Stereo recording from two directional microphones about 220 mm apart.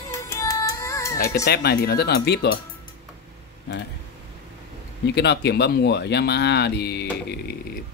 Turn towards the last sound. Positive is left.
turn(degrees=50)  # may be behind; listen again after turning